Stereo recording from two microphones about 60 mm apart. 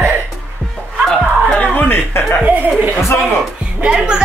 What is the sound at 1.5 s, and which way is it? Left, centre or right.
Music, left.